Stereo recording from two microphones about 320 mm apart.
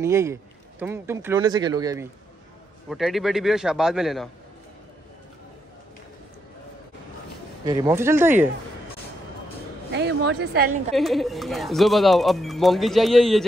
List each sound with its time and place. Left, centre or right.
0.0 s speech: centre
2.9 s speech: centre
7.6 s speech: centre
9.9 s speech: right
11.0 s speech: centre